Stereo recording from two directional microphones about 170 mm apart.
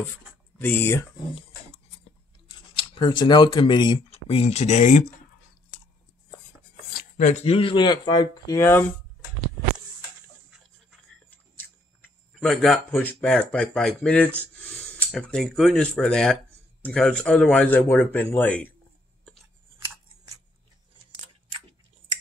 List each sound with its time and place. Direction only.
0.6 s speech: 10° left (ahead or behind)
2.7 s speech: 30° left (ahead or behind)
6.9 s chopping: 55° left (ahead or behind)
7.4 s speech: 30° left (ahead or behind); by 8.8 s 15° left (ahead or behind)
11.2 s speech: 10° left (ahead or behind)